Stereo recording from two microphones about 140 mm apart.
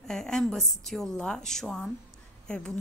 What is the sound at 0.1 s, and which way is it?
A woman's voice, 5° left (ahead or behind).